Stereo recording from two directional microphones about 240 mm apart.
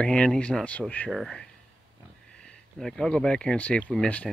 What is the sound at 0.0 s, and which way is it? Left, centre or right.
Speech, centre.